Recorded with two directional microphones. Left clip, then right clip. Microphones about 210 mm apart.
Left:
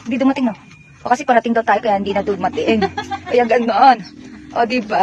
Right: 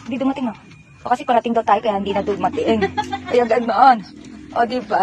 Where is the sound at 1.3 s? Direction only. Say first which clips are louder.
Even; 20° left (ahead or behind).